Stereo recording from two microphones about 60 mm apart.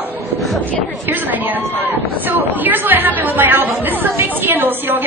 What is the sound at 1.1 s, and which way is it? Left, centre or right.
A woman's voice, right.